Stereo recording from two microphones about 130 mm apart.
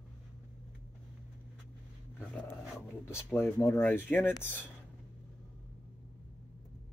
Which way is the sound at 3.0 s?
20° left (ahead or behind).